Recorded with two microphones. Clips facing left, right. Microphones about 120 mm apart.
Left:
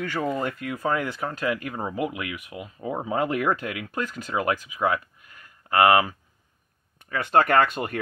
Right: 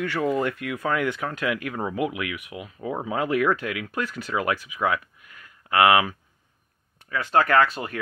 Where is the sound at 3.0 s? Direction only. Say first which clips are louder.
Left 2 dB; 40° left (ahead or behind).